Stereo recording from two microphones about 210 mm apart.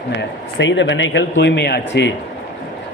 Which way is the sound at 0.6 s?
60° left (ahead or behind).